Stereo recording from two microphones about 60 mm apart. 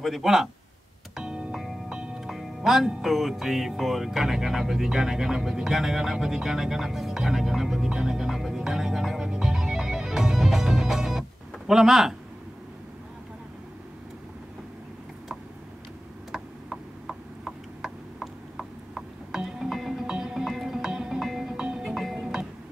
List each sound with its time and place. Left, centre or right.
0.0 s speech: centre
1.1 s music: centre
2.1 s music: centre
3.0 s speech: centre
7.9 s music: centre
16.3 s a sound: centre
21.5 s music: centre
21.9 s music: centre